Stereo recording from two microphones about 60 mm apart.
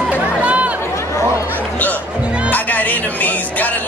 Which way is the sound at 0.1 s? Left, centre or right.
Right.